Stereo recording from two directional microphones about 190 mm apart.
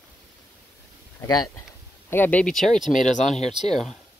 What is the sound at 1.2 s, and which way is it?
Speech, 20° left (ahead or behind).